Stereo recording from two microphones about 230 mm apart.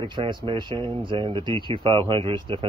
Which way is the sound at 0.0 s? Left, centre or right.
Right.